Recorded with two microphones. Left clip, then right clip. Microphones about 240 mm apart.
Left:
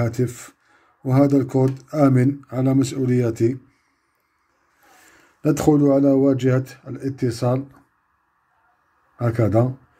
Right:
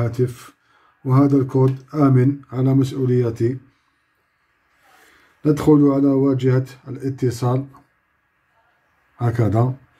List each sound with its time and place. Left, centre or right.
0.0 s speech: centre
5.4 s speech: centre
9.4 s speech: centre